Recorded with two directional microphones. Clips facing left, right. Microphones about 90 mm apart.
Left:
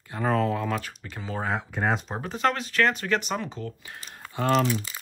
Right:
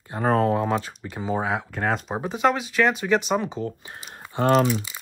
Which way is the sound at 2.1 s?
15° right (ahead or behind).